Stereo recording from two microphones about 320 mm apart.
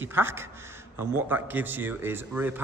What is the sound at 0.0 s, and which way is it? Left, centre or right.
A man's voice, centre.